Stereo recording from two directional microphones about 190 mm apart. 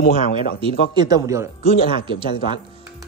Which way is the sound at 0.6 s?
20° right (ahead or behind).